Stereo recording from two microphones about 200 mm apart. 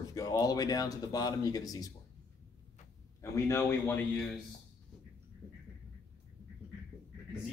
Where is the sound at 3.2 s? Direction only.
15° left (ahead or behind).